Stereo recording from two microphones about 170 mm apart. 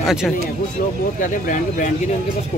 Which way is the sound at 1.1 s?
50° left (ahead or behind).